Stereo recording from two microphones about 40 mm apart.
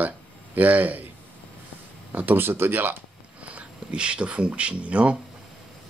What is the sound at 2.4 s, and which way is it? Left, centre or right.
Speech, right.